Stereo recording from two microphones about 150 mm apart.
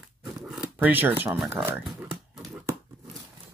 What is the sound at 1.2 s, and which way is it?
Speech, 15° right (ahead or behind).